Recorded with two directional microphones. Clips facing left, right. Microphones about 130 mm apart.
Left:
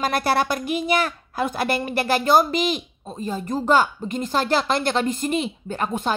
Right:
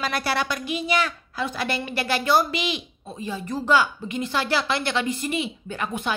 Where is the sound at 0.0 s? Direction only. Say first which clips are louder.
Left 5 dB; 50° left (ahead or behind).